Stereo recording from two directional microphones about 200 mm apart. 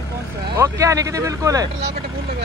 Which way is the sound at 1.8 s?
55° right (ahead or behind).